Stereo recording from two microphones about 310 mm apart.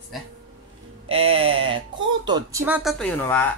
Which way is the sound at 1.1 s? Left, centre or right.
Centre.